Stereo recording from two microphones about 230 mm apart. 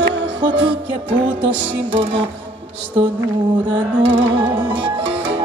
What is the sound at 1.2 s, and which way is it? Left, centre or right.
Music, right.